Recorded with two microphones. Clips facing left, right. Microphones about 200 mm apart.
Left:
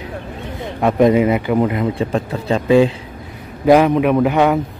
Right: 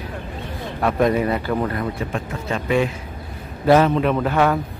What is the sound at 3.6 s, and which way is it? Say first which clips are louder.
Speech: left 4 dB; 15° left (ahead or behind).